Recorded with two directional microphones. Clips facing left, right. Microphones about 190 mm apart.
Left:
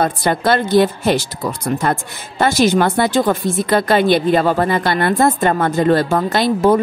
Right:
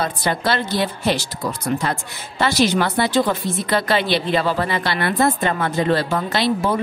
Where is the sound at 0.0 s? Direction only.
50° left (ahead or behind).